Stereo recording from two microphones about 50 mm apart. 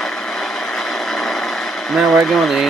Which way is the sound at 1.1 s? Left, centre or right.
Centre.